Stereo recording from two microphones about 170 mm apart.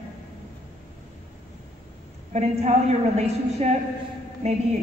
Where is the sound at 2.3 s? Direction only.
40° right (ahead or behind).